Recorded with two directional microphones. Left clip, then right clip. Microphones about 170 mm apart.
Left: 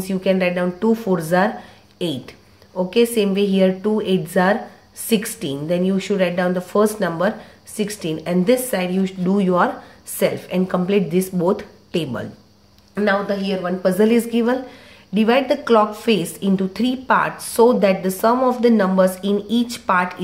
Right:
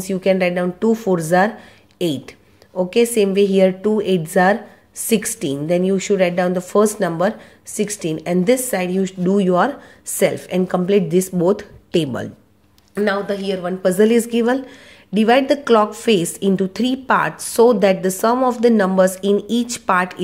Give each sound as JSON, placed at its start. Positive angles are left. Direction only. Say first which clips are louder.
{"t": 0.0, "sound": "a woman's voice", "louder": "right 2 dB", "side_deg": -35}
{"t": 10.1, "sound": "a woman's voice", "louder": "right 2 dB", "side_deg": -45}
{"t": 12.9, "sound": "a woman's voice", "louder": "even", "side_deg": -50}